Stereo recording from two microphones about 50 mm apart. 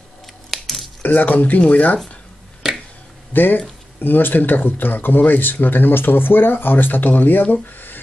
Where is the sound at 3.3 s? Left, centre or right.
Left.